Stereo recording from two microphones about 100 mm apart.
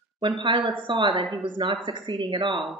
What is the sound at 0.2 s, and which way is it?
Speech, 55° right (ahead or behind).